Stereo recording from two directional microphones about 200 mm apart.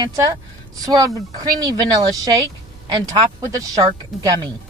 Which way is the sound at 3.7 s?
15° right (ahead or behind).